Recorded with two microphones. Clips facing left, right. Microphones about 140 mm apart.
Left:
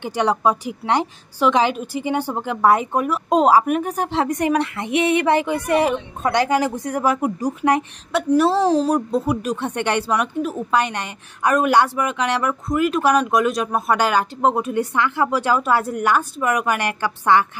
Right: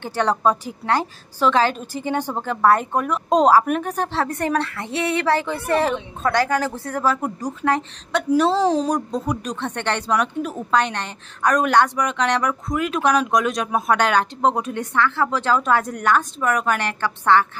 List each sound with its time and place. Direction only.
0.0 s speech: 15° left (ahead or behind)